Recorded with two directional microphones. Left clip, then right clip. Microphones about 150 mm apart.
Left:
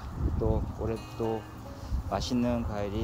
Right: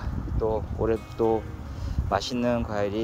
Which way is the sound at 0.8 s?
20° right (ahead or behind).